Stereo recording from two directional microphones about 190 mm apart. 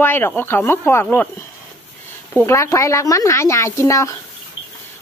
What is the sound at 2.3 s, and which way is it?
Speech, 15° left (ahead or behind).